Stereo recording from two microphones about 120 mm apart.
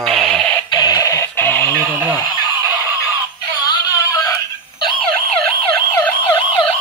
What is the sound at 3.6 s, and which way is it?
Synthetic singing, 30° left (ahead or behind).